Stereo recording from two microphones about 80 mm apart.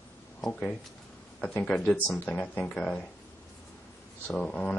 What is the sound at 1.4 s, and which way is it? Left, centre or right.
Speech, centre.